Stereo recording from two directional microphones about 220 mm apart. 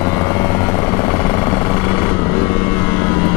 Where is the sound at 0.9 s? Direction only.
15° left (ahead or behind).